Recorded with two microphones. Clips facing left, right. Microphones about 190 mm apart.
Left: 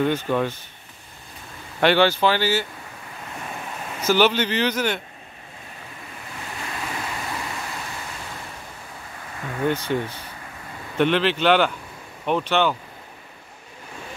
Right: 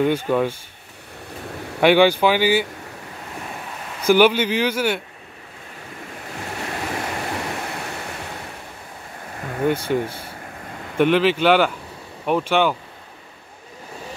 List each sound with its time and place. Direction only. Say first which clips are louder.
0.0 s speech: right 3 dB; 10° right (ahead or behind)
1.8 s speech: right 3 dB; 10° right (ahead or behind)
4.0 s speech: right 4 dB; 10° right (ahead or behind)
6.7 s a sound: right 4 dB; 60° right (ahead or behind)
9.6 s speech: right 3 dB; 10° right (ahead or behind)